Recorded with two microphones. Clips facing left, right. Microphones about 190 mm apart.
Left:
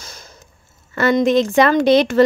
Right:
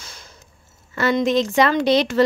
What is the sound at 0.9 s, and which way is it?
A woman's voice, 55° left (ahead or behind).